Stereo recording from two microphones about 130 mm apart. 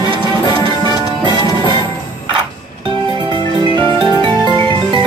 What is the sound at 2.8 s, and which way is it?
Music, 40° right (ahead or behind).